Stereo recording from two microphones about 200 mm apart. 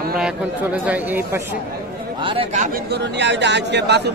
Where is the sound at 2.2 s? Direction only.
25° right (ahead or behind); by 4.1 s 60° right (ahead or behind).